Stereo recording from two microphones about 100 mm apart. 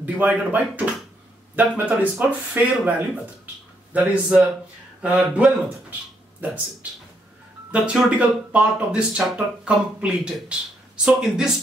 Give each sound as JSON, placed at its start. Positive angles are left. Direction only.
{"t": 0.0, "sound": "speech", "side_deg": -15}
{"t": 1.9, "sound": "speech", "side_deg": -15}